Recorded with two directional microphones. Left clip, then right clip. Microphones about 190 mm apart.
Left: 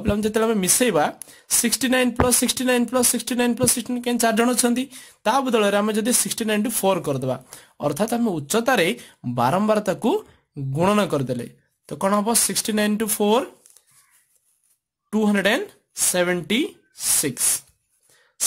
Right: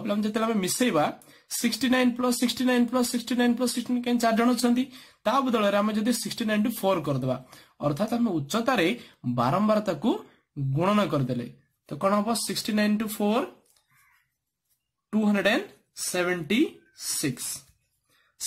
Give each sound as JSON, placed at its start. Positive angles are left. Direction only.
{"t": 0.0, "sound": "speech", "side_deg": 40}
{"t": 15.0, "sound": "speech", "side_deg": 45}